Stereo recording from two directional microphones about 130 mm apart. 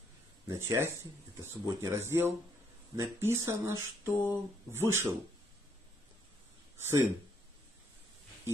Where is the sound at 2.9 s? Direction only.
20° right (ahead or behind).